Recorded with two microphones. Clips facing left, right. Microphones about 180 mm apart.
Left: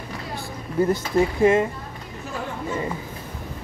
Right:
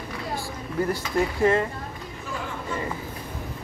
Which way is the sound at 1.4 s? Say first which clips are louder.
Left 3 dB; 15° left (ahead or behind).